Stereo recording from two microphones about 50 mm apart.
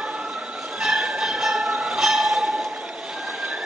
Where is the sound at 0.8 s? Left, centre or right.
Centre.